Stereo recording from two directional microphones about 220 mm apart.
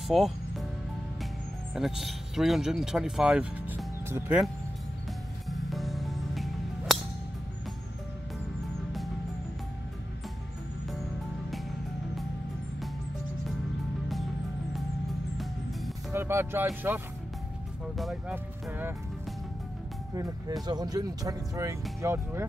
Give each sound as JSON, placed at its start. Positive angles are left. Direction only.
{"t": 0.1, "sound": "music", "side_deg": 0}
{"t": 1.8, "sound": "speech", "side_deg": 0}
{"t": 5.5, "sound": "music", "side_deg": 0}
{"t": 15.3, "sound": "music", "side_deg": 0}
{"t": 16.1, "sound": "speech", "side_deg": -10}
{"t": 20.6, "sound": "speech", "side_deg": -20}